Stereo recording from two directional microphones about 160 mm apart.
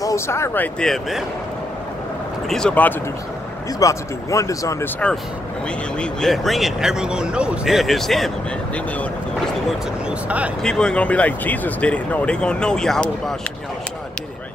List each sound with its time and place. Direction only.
0.0 s speech: 20° left (ahead or behind)
0.7 s speech: centre (ahead or behind)
2.4 s speech: 5° left (ahead or behind)
3.8 s speech: 20° left (ahead or behind)
5.9 s speech: centre (ahead or behind)
9.7 s speech: 5° right (ahead or behind)
10.6 s speech: 5° left (ahead or behind)